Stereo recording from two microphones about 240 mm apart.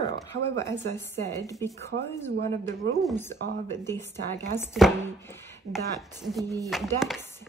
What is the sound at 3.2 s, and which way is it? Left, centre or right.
Speech, centre.